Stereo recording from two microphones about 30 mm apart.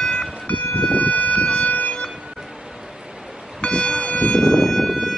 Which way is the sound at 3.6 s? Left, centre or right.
Left.